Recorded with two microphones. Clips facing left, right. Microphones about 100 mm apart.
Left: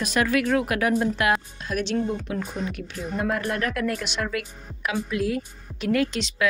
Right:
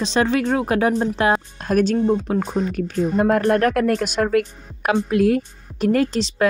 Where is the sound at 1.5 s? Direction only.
45° right (ahead or behind).